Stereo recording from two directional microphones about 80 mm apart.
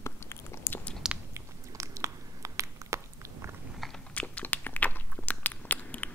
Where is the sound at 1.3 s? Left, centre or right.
Right.